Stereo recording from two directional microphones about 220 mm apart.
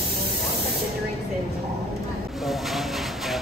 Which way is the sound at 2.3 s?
Centre (ahead or behind).